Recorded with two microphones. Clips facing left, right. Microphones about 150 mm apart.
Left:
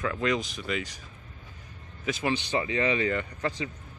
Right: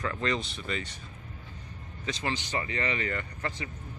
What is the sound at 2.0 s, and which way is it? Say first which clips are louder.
Speech: left 5 dB; 15° left (ahead or behind).